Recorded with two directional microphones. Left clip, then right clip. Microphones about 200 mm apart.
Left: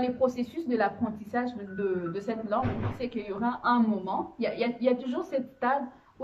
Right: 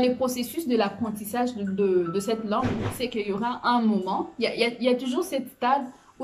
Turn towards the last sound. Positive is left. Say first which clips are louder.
# right 4 dB
turn(degrees=-10)  # may be behind; listen again after turning